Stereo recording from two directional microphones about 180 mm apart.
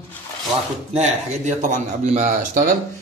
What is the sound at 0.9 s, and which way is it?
A man's voice, 40° right (ahead or behind).